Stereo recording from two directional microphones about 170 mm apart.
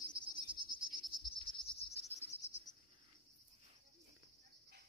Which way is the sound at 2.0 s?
40° left (ahead or behind).